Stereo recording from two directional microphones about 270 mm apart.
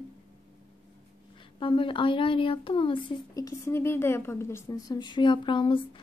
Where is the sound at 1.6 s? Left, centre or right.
Centre.